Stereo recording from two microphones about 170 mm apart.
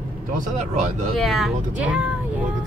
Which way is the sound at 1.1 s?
Centre (ahead or behind).